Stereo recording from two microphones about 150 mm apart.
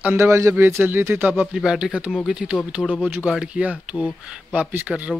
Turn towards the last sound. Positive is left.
turn(degrees=-10)  # may be behind; listen again after turning